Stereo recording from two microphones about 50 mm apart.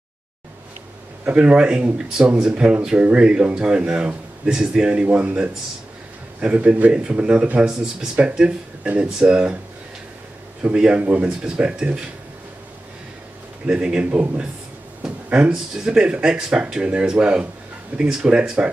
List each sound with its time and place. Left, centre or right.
1.2 s speech: right
7.6 s speech: centre
10.6 s speech: right
13.7 s speech: right
15.0 s a sound: right
15.5 s speech: centre